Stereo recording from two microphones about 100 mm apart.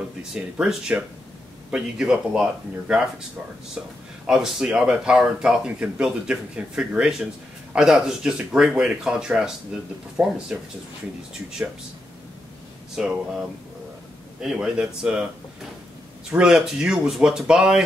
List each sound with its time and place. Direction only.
0.3 s speech: 10° right (ahead or behind)
4.3 s speech: 5° right (ahead or behind)
11.6 s speech: 15° right (ahead or behind)
13.0 s speech: 5° right (ahead or behind)
14.4 s speech: 5° right (ahead or behind)
16.3 s speech: 5° right (ahead or behind)